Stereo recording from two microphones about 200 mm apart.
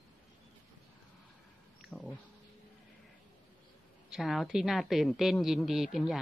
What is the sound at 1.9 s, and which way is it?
Speech, 5° left (ahead or behind).